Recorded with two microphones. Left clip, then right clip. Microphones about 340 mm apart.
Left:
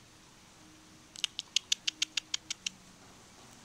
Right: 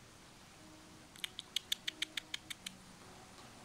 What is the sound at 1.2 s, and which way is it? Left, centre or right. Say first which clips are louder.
Patter: left 8 dB; centre.